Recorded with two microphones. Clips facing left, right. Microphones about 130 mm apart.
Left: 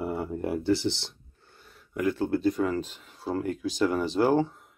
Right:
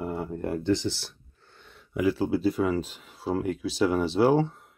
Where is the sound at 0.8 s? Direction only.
15° left (ahead or behind).